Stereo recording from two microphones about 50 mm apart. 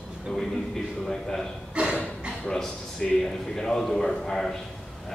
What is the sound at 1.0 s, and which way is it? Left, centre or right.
Speech, centre.